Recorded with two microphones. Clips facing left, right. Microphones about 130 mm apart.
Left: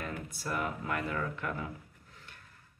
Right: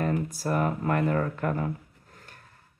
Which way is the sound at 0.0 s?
40° right (ahead or behind).